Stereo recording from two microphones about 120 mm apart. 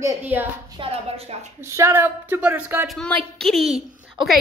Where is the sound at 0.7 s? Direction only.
55° right (ahead or behind).